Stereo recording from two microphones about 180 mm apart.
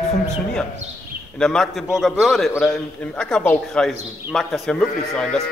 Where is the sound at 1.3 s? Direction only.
5° left (ahead or behind).